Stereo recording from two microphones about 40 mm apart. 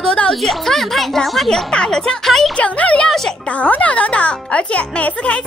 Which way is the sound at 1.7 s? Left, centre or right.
Left.